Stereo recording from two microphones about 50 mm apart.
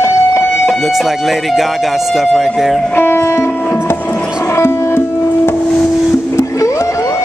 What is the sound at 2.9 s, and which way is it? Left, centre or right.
Music, left.